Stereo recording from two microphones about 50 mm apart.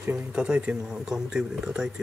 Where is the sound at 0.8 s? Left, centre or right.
Centre.